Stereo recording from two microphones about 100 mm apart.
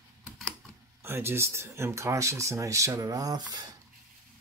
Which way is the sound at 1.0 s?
25° right (ahead or behind).